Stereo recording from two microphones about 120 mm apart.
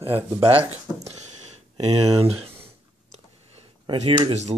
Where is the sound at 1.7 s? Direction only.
55° right (ahead or behind).